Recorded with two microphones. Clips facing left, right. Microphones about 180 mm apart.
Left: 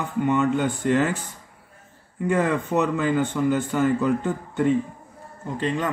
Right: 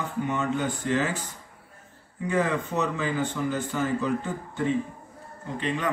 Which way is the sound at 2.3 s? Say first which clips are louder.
Left 4 dB; 55° left (ahead or behind).